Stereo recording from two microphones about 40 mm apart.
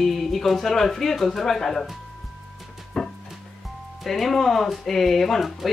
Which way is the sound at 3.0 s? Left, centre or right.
Centre.